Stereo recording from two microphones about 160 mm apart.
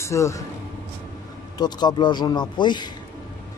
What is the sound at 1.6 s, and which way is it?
A man's voice, 25° left (ahead or behind).